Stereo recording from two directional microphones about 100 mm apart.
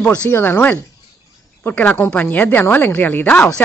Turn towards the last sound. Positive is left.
turn(degrees=15)  # may be behind; listen again after turning